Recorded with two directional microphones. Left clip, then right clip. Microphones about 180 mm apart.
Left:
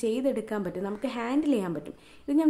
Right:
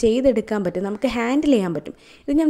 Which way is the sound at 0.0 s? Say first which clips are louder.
Right 10 dB; 40° right (ahead or behind).